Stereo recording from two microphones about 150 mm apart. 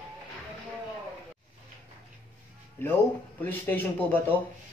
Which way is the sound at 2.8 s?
15° left (ahead or behind).